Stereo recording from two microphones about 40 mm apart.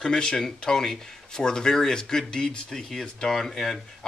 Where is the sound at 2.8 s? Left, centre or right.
Centre.